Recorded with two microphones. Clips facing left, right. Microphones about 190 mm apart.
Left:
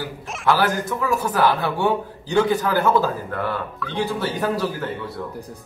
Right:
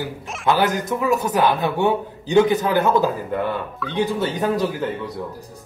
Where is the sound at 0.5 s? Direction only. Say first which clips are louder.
Right 1 dB; 20° right (ahead or behind).